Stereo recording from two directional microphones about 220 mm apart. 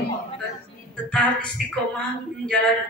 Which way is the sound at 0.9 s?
5° left (ahead or behind).